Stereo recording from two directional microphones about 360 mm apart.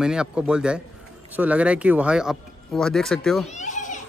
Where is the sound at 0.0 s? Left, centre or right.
Centre.